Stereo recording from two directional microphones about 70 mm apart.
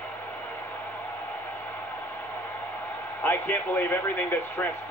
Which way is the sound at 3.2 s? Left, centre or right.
Left.